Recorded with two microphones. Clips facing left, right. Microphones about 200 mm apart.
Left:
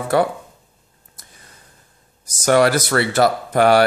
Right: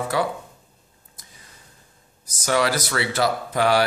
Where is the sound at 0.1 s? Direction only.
60° left (ahead or behind).